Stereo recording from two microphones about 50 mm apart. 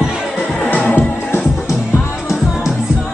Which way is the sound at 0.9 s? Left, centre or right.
Left.